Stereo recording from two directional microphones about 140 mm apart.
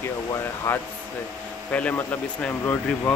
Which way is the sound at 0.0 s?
20° left (ahead or behind).